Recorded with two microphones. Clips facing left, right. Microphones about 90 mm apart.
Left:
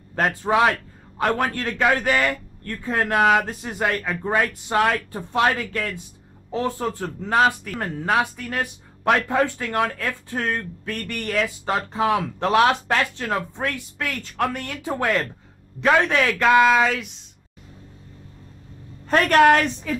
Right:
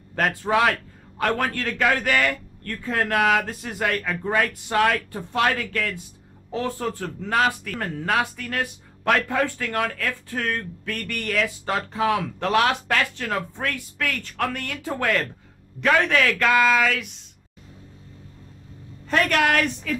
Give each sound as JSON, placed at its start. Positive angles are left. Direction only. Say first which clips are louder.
{"t": 0.4, "sound": "speech", "louder": "left 2 dB", "side_deg": 20}
{"t": 19.0, "sound": "a woman's voice", "louder": "left 6 dB", "side_deg": 40}